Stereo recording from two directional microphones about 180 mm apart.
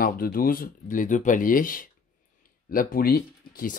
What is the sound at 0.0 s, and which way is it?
Speech, 55° left (ahead or behind).